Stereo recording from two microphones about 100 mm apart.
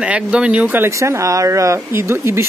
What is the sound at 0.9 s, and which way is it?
Speech, 30° right (ahead or behind).